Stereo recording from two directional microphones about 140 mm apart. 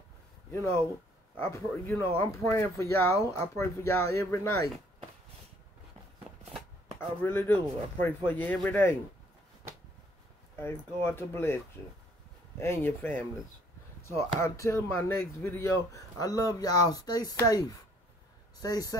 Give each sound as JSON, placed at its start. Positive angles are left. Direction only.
{"t": 0.5, "sound": "speech", "side_deg": 15}
{"t": 7.0, "sound": "speech", "side_deg": 15}
{"t": 11.1, "sound": "speech", "side_deg": 15}